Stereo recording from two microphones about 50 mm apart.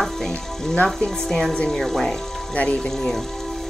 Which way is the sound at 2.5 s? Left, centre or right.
Left.